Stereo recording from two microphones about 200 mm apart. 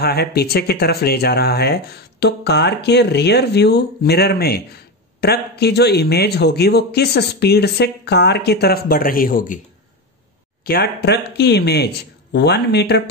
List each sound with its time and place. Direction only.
0.0 s a man's voice: 55° left (ahead or behind)
10.6 s a man's voice: 50° left (ahead or behind)